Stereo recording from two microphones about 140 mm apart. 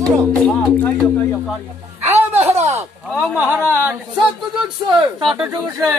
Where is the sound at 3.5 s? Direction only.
10° right (ahead or behind).